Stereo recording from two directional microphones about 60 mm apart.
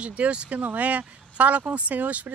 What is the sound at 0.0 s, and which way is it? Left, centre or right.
Speech, right.